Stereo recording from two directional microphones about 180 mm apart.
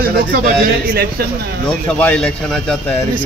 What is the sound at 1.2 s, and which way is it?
Speech, 60° right (ahead or behind).